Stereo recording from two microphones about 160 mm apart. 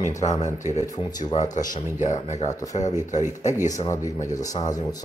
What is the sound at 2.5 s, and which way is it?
Speech, 20° left (ahead or behind).